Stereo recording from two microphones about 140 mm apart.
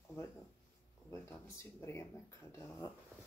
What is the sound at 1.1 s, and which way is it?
Speech, 20° left (ahead or behind).